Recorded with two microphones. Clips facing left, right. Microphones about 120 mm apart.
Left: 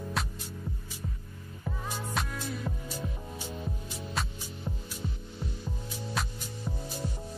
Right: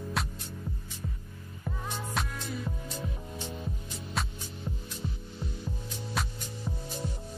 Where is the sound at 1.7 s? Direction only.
5° left (ahead or behind).